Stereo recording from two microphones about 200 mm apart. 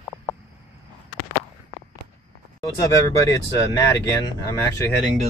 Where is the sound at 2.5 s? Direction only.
15° left (ahead or behind).